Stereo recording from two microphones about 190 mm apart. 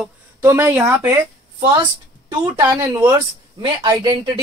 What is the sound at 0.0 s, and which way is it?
Speech, 10° right (ahead or behind).